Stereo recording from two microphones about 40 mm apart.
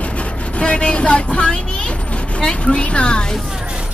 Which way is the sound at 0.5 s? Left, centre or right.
Left.